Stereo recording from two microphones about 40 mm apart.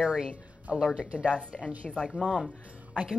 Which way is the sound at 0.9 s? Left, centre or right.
Right.